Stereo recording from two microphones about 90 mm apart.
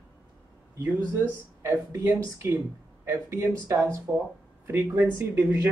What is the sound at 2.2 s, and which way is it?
Speech, 30° right (ahead or behind).